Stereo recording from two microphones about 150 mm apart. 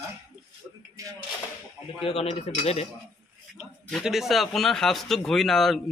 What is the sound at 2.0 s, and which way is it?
Speech, 40° left (ahead or behind).